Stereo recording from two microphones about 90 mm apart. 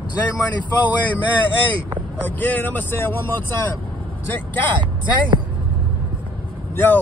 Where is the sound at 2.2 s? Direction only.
20° left (ahead or behind).